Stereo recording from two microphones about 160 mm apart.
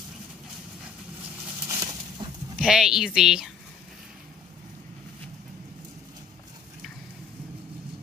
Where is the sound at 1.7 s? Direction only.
20° right (ahead or behind).